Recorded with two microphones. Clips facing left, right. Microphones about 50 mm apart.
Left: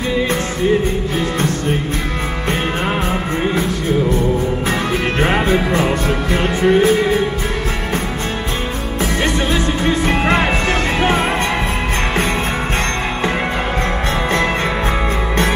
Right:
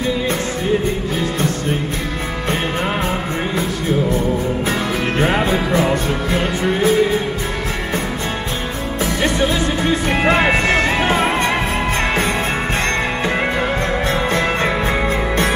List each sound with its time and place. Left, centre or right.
5.2 s music: left
10.0 s music: left